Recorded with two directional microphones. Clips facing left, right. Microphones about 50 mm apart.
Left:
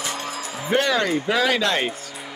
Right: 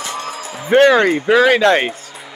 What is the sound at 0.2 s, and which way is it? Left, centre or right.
Speech, right.